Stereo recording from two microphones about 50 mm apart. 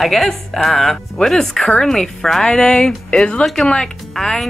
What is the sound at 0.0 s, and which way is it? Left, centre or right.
Speech, centre.